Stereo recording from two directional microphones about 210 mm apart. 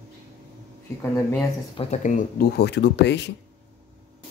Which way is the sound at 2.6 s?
55° left (ahead or behind).